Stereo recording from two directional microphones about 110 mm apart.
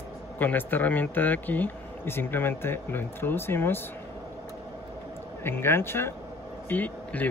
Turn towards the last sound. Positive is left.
turn(degrees=15)  # may be behind; listen again after turning